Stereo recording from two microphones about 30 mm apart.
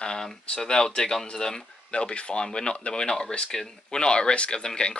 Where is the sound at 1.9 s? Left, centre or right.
Left.